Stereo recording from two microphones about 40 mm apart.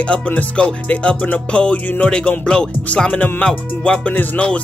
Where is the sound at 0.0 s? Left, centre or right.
Left.